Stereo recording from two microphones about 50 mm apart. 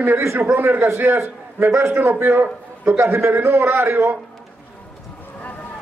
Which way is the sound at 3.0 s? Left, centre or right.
Right.